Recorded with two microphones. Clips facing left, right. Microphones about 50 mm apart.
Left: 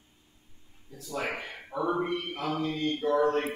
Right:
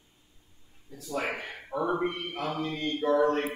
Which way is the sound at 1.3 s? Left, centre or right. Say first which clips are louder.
Right 1 dB; right.